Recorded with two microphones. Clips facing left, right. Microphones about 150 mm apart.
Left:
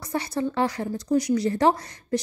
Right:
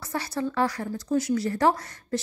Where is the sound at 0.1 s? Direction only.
20° left (ahead or behind).